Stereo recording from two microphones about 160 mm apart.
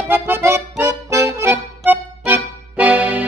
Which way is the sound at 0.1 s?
15° right (ahead or behind).